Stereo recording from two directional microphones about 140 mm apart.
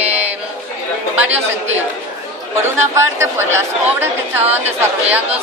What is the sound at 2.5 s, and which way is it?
Speech, 20° right (ahead or behind).